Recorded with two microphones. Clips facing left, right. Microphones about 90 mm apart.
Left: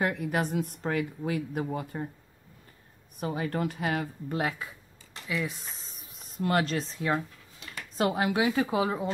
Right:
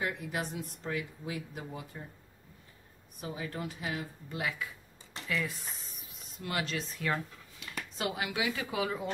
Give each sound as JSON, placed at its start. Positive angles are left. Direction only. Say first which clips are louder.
{"t": 0.0, "sound": "speech", "louder": "left 7 dB", "side_deg": 55}
{"t": 3.2, "sound": "speech", "louder": "left 8 dB", "side_deg": 55}
{"t": 5.3, "sound": "speech", "louder": "left 2 dB", "side_deg": 20}
{"t": 6.1, "sound": "speech", "louder": "left 9 dB", "side_deg": 40}
{"t": 8.0, "sound": "a woman's voice", "louder": "left 8 dB", "side_deg": 40}